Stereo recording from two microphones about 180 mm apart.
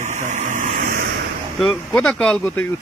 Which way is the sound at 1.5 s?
5° left (ahead or behind).